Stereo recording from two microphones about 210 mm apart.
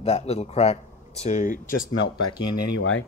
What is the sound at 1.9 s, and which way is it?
Speech, 90° left.